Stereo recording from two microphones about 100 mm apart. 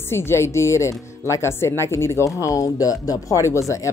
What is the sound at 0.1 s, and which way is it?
Speech, 25° left (ahead or behind).